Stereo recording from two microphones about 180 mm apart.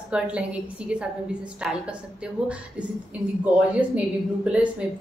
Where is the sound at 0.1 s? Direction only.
5° right (ahead or behind).